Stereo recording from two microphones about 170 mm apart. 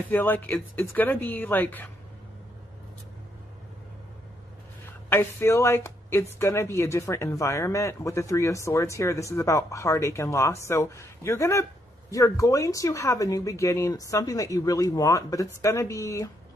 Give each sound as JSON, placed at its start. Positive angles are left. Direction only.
{"t": 0.1, "sound": "speech", "side_deg": 10}
{"t": 5.1, "sound": "speech", "side_deg": 15}